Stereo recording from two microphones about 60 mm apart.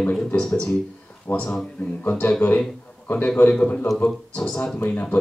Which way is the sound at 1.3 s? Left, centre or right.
Left.